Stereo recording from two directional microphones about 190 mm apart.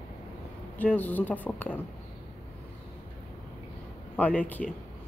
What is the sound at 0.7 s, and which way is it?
A woman's voice, 10° left (ahead or behind).